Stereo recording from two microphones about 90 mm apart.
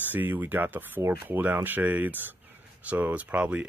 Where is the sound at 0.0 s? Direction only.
20° right (ahead or behind).